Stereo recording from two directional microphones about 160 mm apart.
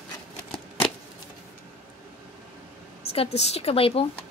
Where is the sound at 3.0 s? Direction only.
40° left (ahead or behind).